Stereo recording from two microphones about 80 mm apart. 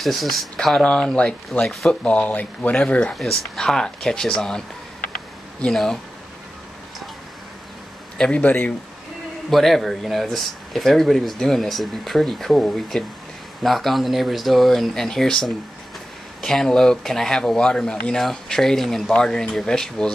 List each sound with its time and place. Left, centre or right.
0.0 s speech: centre
8.2 s speech: centre
9.5 s speech: centre